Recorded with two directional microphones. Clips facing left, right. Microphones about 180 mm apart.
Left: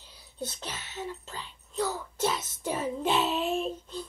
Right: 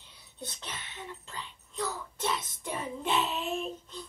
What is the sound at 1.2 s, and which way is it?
Music, 35° left (ahead or behind).